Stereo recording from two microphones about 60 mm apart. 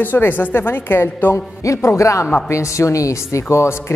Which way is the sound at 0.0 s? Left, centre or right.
Left.